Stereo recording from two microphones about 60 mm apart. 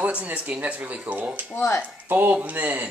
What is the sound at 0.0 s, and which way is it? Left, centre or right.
Speech, right.